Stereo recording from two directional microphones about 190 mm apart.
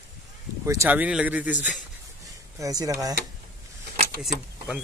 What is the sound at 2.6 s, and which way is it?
Speech, 20° right (ahead or behind).